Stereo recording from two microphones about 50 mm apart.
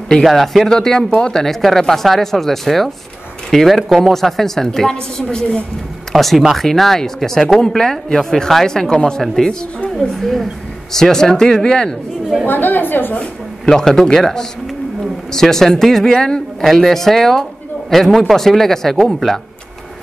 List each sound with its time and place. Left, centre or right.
0.2 s speech: centre
6.1 s speech: centre
12.4 s a woman's voice: left
13.7 s a man's voice: centre